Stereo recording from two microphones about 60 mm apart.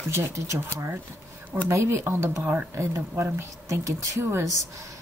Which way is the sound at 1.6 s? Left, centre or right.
Right.